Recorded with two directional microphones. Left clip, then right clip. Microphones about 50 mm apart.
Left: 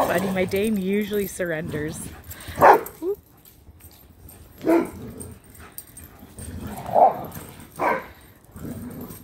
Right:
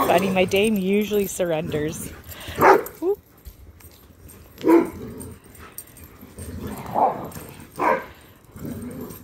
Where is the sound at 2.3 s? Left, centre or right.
Right.